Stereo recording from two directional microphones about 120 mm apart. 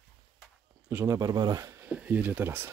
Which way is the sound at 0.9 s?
15° right (ahead or behind).